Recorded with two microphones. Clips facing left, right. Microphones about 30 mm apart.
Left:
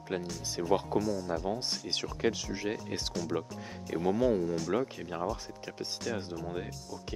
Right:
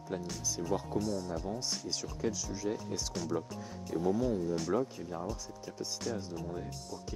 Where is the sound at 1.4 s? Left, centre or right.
Left.